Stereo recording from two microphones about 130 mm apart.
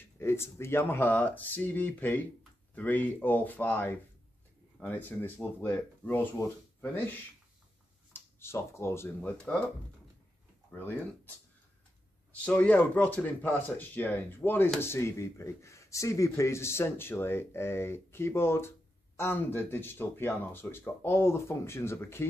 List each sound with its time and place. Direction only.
0.0 s speech: 20° left (ahead or behind)
10.7 s speech: 15° left (ahead or behind)
12.4 s speech: 10° left (ahead or behind)